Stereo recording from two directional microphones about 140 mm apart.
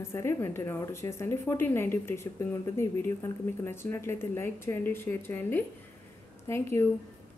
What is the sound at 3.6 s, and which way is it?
Speech, 20° left (ahead or behind).